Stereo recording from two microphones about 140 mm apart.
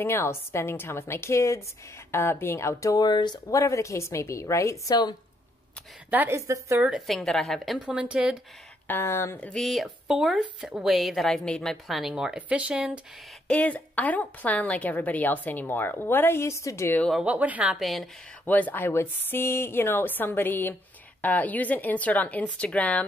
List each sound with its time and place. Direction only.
0.0 s a woman's voice: 15° left (ahead or behind)
6.0 s a woman's voice: 15° right (ahead or behind)
6.8 s speech: centre (ahead or behind)
8.8 s speech: 15° left (ahead or behind); by 13.0 s 5° right (ahead or behind)
13.5 s a woman's voice: 10° left (ahead or behind)
17.1 s speech: 10° right (ahead or behind)
18.4 s a woman's voice: 10° left (ahead or behind)